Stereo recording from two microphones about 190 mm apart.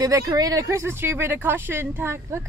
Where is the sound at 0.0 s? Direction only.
20° right (ahead or behind).